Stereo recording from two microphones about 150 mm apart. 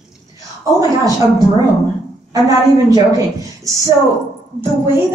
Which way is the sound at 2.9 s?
25° right (ahead or behind).